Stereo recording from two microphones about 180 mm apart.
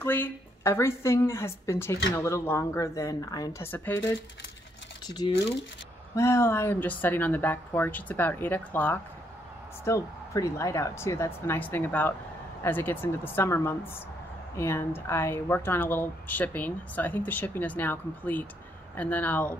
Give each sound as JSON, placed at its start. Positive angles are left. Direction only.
{"t": 0.0, "sound": "speech", "side_deg": 10}
{"t": 5.0, "sound": "speech", "side_deg": 25}